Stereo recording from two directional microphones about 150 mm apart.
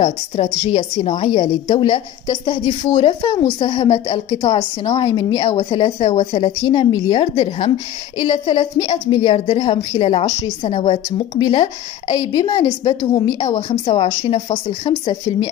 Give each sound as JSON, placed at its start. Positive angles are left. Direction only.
{"t": 0.0, "sound": "a woman's voice", "side_deg": 40}
{"t": 13.6, "sound": "a woman's voice", "side_deg": 35}